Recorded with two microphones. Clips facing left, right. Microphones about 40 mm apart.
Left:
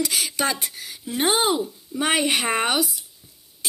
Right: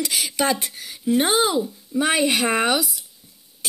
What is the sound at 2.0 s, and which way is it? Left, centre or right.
Speech, left.